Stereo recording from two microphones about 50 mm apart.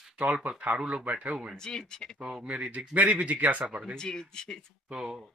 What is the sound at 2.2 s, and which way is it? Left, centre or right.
Speech, right.